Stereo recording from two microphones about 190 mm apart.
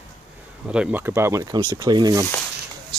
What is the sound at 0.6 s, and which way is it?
Speech, 5° right (ahead or behind).